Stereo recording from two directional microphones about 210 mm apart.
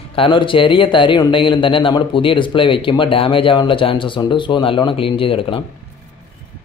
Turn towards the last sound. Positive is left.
turn(degrees=25)  # may be behind; listen again after turning